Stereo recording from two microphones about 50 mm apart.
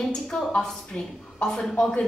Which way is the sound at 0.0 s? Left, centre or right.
Centre.